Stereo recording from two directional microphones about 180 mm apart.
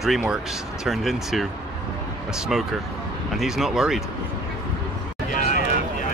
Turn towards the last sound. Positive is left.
turn(degrees=50)  # may be behind; listen again after turning